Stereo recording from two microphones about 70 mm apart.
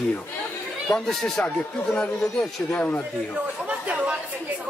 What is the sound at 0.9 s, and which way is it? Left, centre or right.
Speech, centre.